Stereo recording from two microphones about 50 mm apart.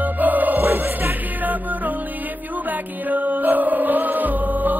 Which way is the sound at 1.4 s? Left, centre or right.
Right.